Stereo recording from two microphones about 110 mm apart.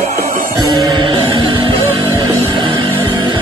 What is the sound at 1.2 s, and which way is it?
Music, 50° right (ahead or behind).